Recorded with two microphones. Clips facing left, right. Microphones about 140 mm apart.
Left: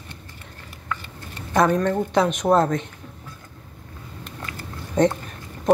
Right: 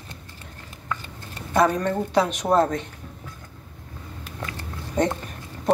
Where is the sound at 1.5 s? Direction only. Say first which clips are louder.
Left 2 dB; 5° right (ahead or behind).